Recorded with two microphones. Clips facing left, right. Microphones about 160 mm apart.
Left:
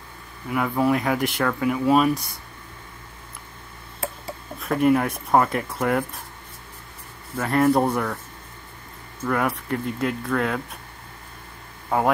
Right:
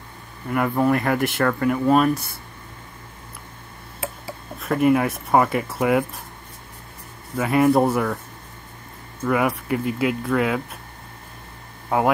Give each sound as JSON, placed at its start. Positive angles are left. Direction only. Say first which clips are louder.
{"t": 0.5, "sound": "speech", "louder": "right 2 dB", "side_deg": 0}
{"t": 4.0, "sound": "speech", "louder": "even", "side_deg": 0}
{"t": 7.3, "sound": "speech", "louder": "right 2 dB", "side_deg": -5}
{"t": 9.2, "sound": "speech", "louder": "right 3 dB", "side_deg": -5}
{"t": 11.9, "sound": "speech", "louder": "right 2 dB", "side_deg": -5}